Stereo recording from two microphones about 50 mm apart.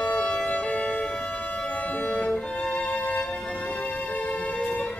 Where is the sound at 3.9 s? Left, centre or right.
Left.